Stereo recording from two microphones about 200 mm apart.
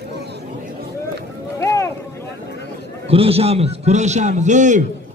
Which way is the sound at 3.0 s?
30° right (ahead or behind).